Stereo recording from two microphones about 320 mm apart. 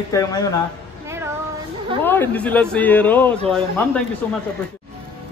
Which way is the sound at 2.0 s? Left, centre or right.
Centre.